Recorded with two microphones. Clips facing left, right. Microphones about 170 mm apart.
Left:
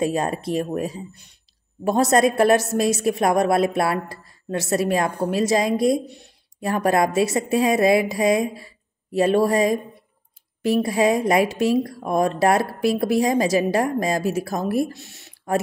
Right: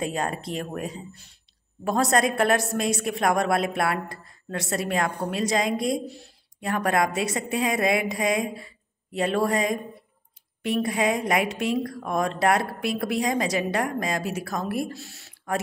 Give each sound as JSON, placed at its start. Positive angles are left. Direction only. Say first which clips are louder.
{"t": 0.0, "sound": "a woman's voice", "louder": "left 6 dB", "side_deg": 25}